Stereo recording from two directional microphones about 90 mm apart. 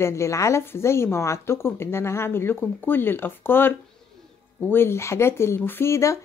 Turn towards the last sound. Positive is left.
turn(degrees=35)  # may be behind; listen again after turning